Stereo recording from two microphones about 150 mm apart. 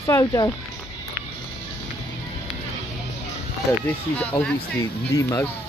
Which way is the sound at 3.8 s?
10° left (ahead or behind).